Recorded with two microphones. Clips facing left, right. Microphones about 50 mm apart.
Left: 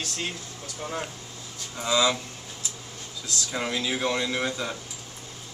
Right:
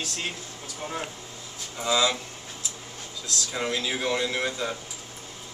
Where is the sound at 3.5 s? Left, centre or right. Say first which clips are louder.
Even; centre.